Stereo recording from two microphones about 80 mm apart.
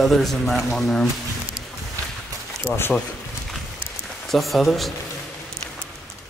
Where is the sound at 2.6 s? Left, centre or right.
Left.